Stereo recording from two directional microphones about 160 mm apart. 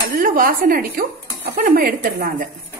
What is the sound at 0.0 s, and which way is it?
A woman's voice, 65° right (ahead or behind).